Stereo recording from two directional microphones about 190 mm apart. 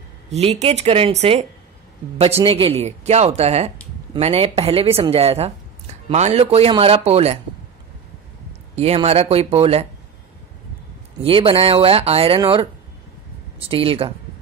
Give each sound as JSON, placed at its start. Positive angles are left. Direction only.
{"t": 0.3, "sound": "speech", "side_deg": -35}
{"t": 2.4, "sound": "speech", "side_deg": -30}
{"t": 8.7, "sound": "speech", "side_deg": -35}
{"t": 11.2, "sound": "speech", "side_deg": -30}